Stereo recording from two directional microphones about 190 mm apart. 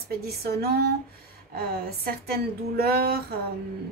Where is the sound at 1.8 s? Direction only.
55° right (ahead or behind).